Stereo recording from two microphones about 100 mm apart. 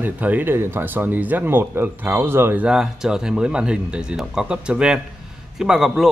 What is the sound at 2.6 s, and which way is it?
A man's voice, 5° right (ahead or behind).